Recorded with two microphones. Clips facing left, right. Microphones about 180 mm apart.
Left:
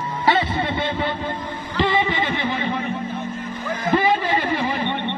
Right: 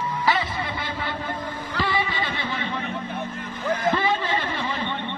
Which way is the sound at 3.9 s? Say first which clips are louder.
Left 5 dB; 15° left (ahead or behind).